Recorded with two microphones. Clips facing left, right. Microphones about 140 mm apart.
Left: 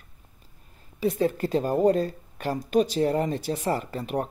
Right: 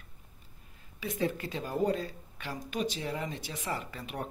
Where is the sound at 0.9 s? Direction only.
35° left (ahead or behind).